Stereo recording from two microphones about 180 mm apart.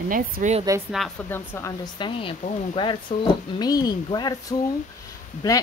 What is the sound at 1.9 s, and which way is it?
Speech, 25° left (ahead or behind).